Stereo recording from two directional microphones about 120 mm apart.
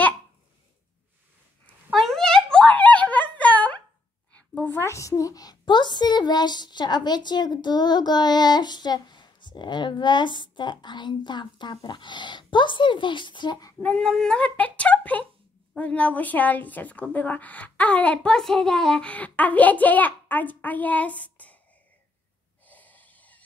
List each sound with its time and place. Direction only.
1.9 s a sound: centre (ahead or behind)
4.3 s a woman's voice: 10° left (ahead or behind); by 13.7 s 35° left (ahead or behind)
13.7 s a woman's voice: 5° left (ahead or behind)
22.7 s snort: 15° left (ahead or behind)